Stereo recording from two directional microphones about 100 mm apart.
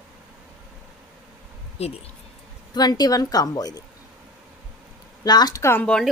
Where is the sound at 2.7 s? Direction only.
45° left (ahead or behind).